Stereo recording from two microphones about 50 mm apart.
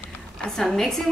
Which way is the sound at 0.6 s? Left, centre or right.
Centre.